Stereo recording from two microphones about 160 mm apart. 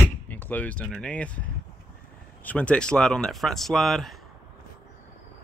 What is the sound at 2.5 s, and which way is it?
Speech, 5° left (ahead or behind).